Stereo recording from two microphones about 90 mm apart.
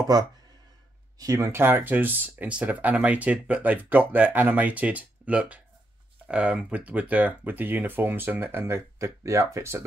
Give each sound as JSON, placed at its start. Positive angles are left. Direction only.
{"t": 1.2, "sound": "speech", "side_deg": -40}
{"t": 1.5, "sound": "speech", "side_deg": -25}